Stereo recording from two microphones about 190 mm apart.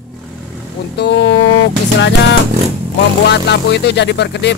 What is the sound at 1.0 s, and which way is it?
Speech, 60° left (ahead or behind).